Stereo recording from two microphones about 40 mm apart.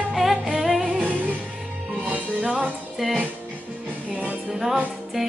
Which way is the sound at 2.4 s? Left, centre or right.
Right.